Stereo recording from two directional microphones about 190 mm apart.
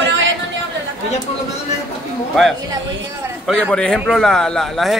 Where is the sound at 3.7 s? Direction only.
5° left (ahead or behind).